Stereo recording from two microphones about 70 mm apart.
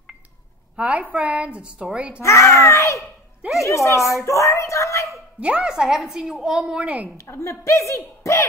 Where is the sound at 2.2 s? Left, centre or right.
Left.